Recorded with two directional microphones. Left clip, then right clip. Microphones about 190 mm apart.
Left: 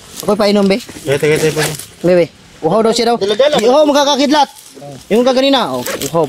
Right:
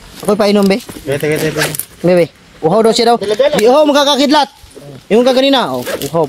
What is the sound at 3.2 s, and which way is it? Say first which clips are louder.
Speech: even; 60° left (ahead or behind).